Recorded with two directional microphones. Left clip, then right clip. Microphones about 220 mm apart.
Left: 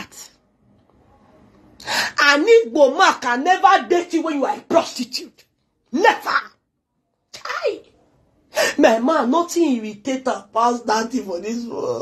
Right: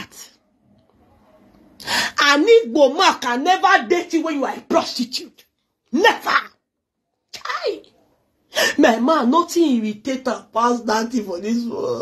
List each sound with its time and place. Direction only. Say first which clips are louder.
0.1 s a sound: even; 35° right (ahead or behind)
1.8 s a sound: even; 35° right (ahead or behind)
3.1 s speech: even; 35° right (ahead or behind)
5.9 s speech: even; 35° right (ahead or behind)
7.2 s bathtub: left 1 dB; 30° right (ahead or behind)
8.5 s speech: even; 35° right (ahead or behind)